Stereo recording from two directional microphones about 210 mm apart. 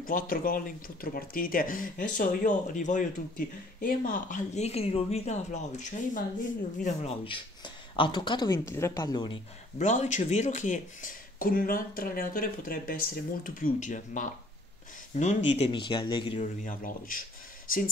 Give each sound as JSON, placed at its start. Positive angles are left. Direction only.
{"t": 0.0, "sound": "speech", "side_deg": 40}
{"t": 9.8, "sound": "speech", "side_deg": 35}
{"t": 16.6, "sound": "speech", "side_deg": 40}